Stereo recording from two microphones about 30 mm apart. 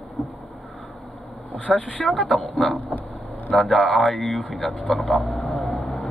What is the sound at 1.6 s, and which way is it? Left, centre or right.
Speech, left.